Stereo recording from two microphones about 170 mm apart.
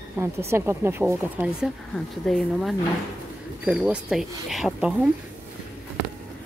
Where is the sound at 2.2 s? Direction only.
Centre (ahead or behind).